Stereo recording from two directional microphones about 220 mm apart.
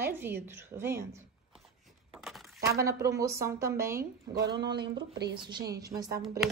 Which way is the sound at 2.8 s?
15° right (ahead or behind).